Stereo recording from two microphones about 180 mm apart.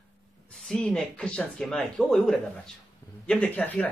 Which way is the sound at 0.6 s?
5° left (ahead or behind).